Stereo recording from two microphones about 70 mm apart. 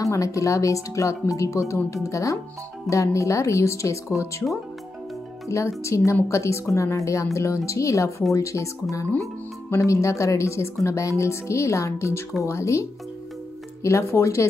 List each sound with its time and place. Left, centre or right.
0.0 s speech: left
5.5 s speech: left
9.7 s speech: left
13.8 s speech: left